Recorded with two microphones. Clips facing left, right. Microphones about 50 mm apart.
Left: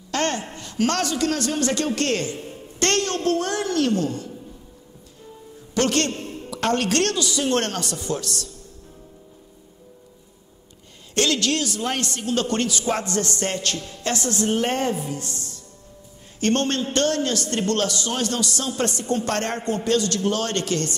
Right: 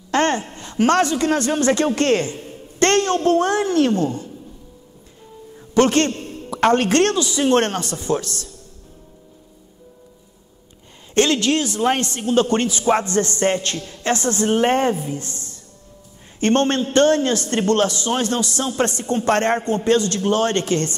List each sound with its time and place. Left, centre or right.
0.1 s a man's voice: right
5.8 s a man's voice: right
11.1 s a man's voice: right